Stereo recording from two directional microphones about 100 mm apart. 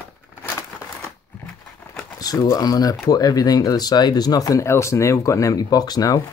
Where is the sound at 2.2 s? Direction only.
40° left (ahead or behind).